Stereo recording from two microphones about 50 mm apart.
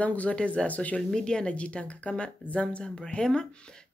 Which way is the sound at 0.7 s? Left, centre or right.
Left.